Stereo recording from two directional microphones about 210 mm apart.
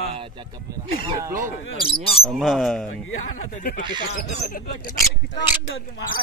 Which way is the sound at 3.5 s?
40° left (ahead or behind).